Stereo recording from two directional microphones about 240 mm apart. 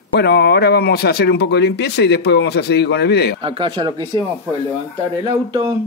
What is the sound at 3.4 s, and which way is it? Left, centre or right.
Speech, right.